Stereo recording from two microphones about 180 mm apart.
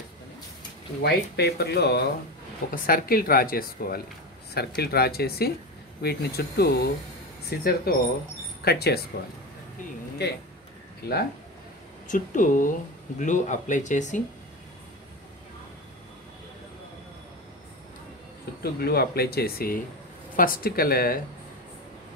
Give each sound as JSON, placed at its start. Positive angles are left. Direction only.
{"t": 1.0, "sound": "speech", "side_deg": 65}
{"t": 2.7, "sound": "speech", "side_deg": 55}
{"t": 11.0, "sound": "speech", "side_deg": 60}
{"t": 12.1, "sound": "speech", "side_deg": 50}
{"t": 18.6, "sound": "speech", "side_deg": 60}